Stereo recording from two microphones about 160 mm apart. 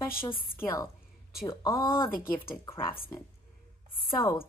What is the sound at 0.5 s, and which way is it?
Speech, 20° left (ahead or behind).